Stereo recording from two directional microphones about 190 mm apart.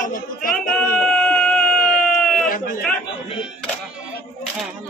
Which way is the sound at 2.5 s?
50° left (ahead or behind).